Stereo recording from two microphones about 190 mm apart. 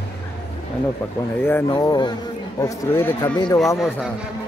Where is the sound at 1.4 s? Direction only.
10° left (ahead or behind).